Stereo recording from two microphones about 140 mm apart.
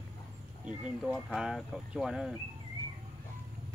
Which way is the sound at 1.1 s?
Centre (ahead or behind).